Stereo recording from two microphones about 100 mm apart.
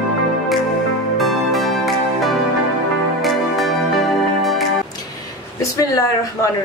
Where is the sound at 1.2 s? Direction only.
Centre (ahead or behind).